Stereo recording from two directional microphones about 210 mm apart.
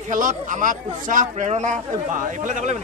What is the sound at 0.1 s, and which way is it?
Speech, 35° right (ahead or behind).